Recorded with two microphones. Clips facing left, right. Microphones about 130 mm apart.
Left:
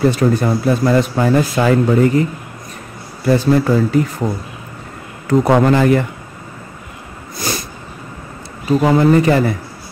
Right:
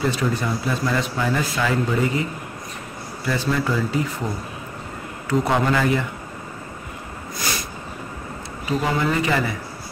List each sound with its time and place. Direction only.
0.0 s a man's voice: 50° left (ahead or behind)
3.3 s a man's voice: 45° left (ahead or behind)
5.3 s a man's voice: 50° left (ahead or behind)
8.6 s a man's voice: 40° left (ahead or behind)